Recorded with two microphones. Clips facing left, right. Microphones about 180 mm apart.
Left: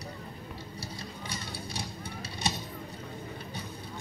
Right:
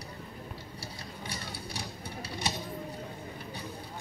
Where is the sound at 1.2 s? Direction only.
20° left (ahead or behind).